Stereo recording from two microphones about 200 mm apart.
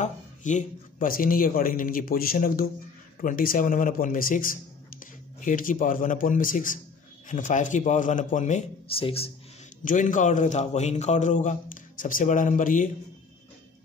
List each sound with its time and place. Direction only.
0.0 s a man's voice: 40° left (ahead or behind)
9.8 s a man's voice: 40° left (ahead or behind)